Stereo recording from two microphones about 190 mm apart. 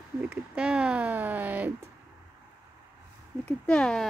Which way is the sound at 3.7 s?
5° left (ahead or behind).